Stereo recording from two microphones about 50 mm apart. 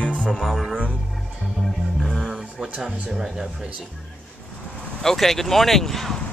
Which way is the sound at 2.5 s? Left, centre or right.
Right.